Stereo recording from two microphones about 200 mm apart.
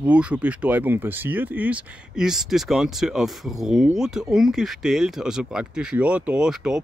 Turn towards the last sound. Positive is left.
turn(degrees=-5)  # may be behind; listen again after turning